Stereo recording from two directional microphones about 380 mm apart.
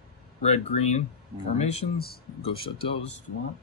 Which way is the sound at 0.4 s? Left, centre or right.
Centre.